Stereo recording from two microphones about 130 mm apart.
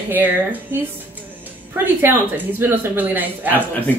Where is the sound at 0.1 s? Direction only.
15° right (ahead or behind).